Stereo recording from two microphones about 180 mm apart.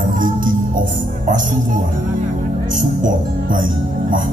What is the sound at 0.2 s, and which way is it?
Music, 50° right (ahead or behind).